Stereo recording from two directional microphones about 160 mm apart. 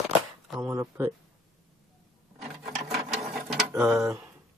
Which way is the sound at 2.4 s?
Centre (ahead or behind).